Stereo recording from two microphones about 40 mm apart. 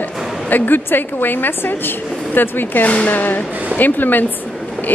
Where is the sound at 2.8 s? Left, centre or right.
Left.